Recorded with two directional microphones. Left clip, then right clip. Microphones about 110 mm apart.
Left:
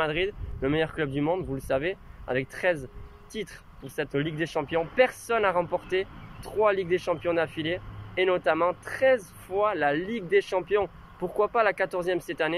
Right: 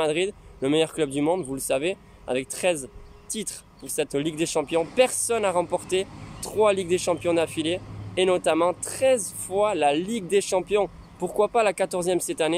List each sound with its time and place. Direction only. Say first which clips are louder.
0.0 s speech: right 3 dB; 25° right (ahead or behind)